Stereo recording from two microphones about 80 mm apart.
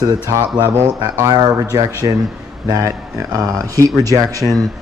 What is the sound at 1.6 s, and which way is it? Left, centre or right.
Speech, right.